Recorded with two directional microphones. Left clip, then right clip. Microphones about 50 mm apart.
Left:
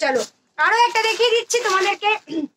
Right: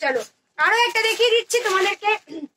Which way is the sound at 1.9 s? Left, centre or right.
Left.